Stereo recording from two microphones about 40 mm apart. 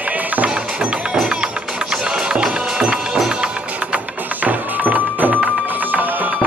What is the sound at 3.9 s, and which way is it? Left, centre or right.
Music, right.